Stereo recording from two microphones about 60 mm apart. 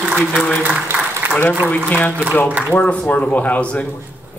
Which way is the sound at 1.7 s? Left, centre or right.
Left.